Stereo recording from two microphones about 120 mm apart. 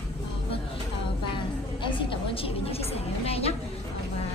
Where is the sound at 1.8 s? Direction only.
45° left (ahead or behind).